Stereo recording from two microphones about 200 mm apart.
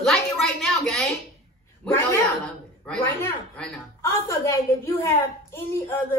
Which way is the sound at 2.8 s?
5° left (ahead or behind).